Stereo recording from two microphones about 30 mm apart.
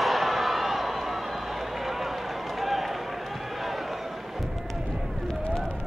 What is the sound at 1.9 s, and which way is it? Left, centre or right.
Run, centre.